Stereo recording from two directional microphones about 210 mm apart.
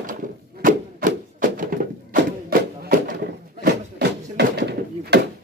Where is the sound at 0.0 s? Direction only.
40° right (ahead or behind).